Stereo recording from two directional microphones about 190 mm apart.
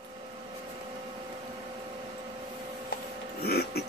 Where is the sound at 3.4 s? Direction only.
55° left (ahead or behind).